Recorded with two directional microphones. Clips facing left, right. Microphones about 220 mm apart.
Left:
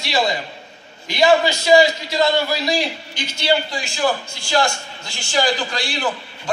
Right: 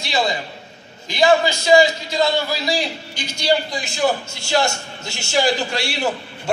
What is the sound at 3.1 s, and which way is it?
A man's voice, 10° right (ahead or behind).